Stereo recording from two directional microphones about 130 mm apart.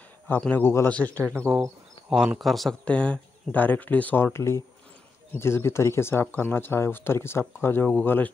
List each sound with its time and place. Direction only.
0.4 s speech: 15° left (ahead or behind)
1.2 s speech: 20° right (ahead or behind)
2.0 s speech: 5° right (ahead or behind); by 8.3 s 15° left (ahead or behind)